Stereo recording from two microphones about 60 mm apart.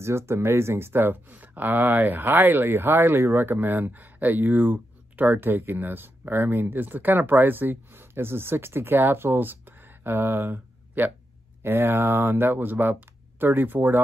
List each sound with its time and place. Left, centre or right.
0.0 s speech: right